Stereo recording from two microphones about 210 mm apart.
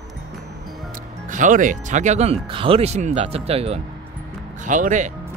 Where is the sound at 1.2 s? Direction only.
40° right (ahead or behind).